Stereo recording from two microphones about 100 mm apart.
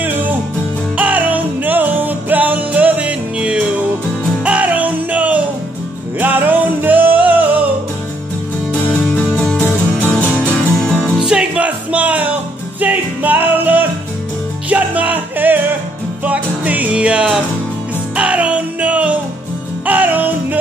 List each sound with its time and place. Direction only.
0.0 s music: 15° right (ahead or behind)
9.6 s music: 15° left (ahead or behind)
11.2 s music: 10° right (ahead or behind)